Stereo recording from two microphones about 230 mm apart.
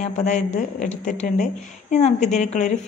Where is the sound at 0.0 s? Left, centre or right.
Left.